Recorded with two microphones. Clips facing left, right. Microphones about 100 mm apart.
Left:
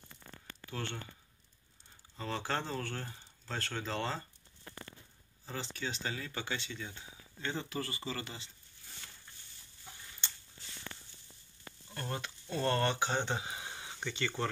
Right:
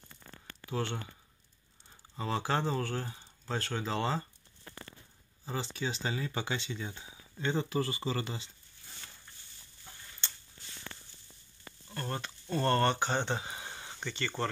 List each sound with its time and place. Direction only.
0.7 s speech: 15° right (ahead or behind)
2.1 s speech: 10° right (ahead or behind)
5.4 s speech: 15° right (ahead or behind)
11.9 s speech: 5° left (ahead or behind)